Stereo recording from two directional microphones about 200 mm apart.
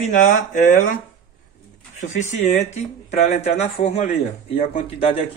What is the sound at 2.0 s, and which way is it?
Speech, 35° left (ahead or behind).